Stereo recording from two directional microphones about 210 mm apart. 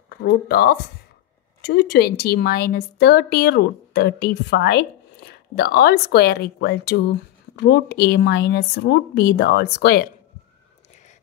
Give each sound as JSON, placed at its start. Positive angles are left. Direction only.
{"t": 0.1, "sound": "a woman's voice", "side_deg": 50}